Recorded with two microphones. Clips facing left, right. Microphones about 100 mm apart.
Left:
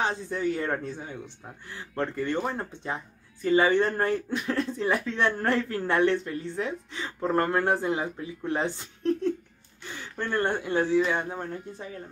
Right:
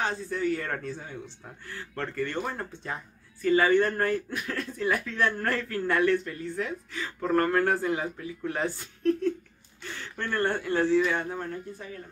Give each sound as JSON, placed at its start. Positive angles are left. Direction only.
{"t": 0.0, "sound": "speech", "side_deg": 20}